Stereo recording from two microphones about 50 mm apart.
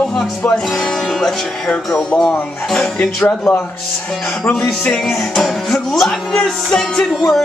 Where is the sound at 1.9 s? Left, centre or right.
Centre.